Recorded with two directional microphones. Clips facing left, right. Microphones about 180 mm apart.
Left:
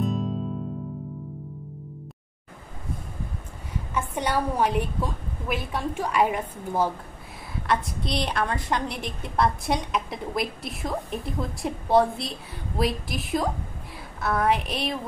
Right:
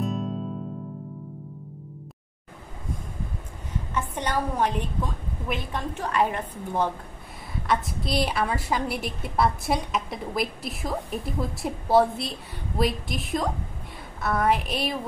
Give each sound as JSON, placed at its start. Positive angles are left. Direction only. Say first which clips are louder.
{"t": 0.0, "sound": "music", "louder": "left 2 dB", "side_deg": 0}
{"t": 3.9, "sound": "a woman's voice", "louder": "left 2 dB", "side_deg": 10}